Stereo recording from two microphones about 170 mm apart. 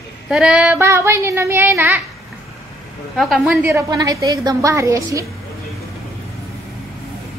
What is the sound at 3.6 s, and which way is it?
A woman's voice, 15° right (ahead or behind).